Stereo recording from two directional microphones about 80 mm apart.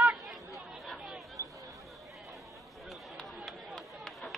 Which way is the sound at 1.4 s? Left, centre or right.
Right.